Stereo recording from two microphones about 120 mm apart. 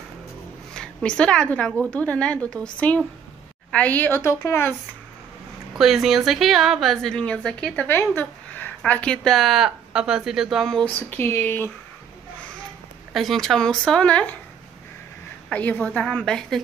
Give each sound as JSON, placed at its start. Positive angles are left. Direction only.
{"t": 0.7, "sound": "a woman's voice", "side_deg": 5}
{"t": 5.8, "sound": "a woman's voice", "side_deg": 0}
{"t": 11.0, "sound": "a woman's voice", "side_deg": 15}
{"t": 13.1, "sound": "a woman's voice", "side_deg": 0}
{"t": 15.5, "sound": "a woman's voice", "side_deg": 10}